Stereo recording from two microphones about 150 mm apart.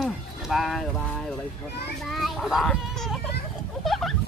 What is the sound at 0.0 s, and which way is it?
Music, centre (ahead or behind).